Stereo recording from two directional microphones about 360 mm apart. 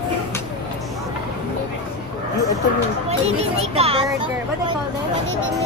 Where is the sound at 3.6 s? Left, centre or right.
Centre.